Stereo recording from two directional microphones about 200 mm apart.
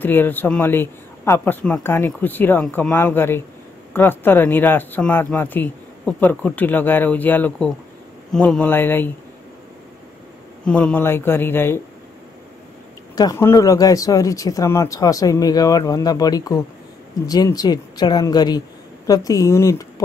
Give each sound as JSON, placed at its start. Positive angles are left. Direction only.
{"t": 0.0, "sound": "speech", "side_deg": 10}
{"t": 10.6, "sound": "speech", "side_deg": 5}
{"t": 13.1, "sound": "speech", "side_deg": 15}